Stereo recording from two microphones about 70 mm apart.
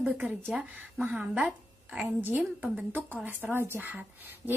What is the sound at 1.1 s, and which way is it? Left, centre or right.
A woman's voice, centre.